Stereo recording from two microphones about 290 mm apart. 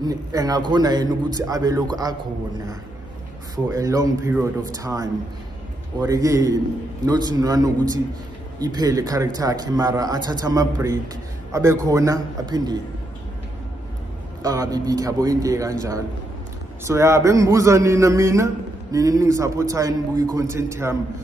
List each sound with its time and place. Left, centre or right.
0.0 s a man's voice: centre
3.5 s a man's voice: centre
14.4 s a man's voice: centre